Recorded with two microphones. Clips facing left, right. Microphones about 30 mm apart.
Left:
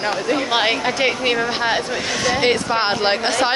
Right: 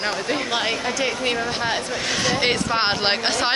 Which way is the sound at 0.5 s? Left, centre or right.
Left.